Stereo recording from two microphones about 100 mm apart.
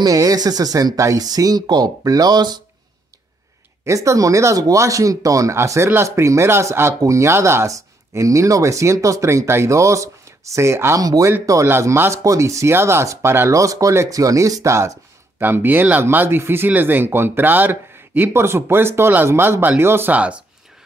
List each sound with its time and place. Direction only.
0.0 s speech: 35° right (ahead or behind)
3.8 s speech: 30° right (ahead or behind); by 20.3 s 15° right (ahead or behind)